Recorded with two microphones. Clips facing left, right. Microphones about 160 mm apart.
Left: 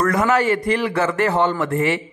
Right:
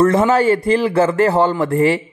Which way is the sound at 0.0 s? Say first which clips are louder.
Right 5 dB; 25° right (ahead or behind).